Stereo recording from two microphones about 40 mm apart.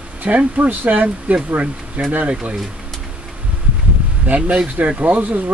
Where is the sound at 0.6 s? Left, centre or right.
Right.